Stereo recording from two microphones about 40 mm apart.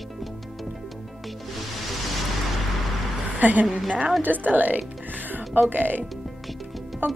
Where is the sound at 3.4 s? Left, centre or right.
Right.